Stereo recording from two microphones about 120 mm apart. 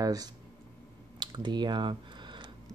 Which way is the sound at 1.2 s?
40° right (ahead or behind).